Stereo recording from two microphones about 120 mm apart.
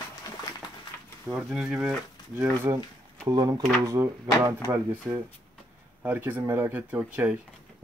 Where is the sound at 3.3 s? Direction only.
30° right (ahead or behind); by 7.4 s 10° right (ahead or behind).